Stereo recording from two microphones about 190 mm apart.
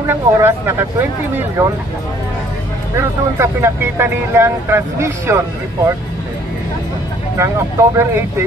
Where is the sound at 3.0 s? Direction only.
15° right (ahead or behind).